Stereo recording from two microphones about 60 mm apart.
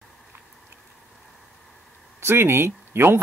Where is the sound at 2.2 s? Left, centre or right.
Right.